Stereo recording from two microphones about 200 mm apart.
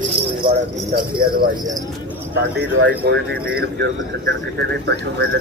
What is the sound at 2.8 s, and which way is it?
Speech, 90° right.